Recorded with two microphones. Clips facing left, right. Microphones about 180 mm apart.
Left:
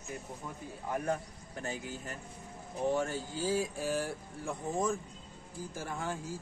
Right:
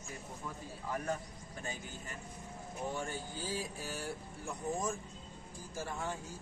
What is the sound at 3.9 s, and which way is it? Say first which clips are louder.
Speech: left 6 dB; 90° left.